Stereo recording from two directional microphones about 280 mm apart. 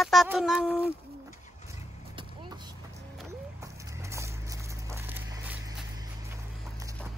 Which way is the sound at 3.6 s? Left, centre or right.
Centre.